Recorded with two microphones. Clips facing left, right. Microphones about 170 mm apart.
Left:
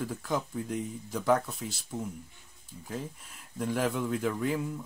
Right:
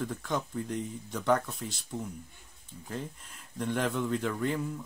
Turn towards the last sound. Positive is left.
turn(degrees=5)  # may be behind; listen again after turning